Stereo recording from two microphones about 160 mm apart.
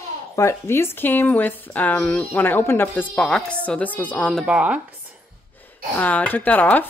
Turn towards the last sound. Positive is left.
turn(degrees=10)  # may be behind; listen again after turning